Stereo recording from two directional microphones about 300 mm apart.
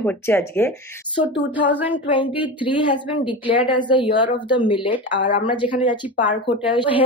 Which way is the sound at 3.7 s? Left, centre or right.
Centre.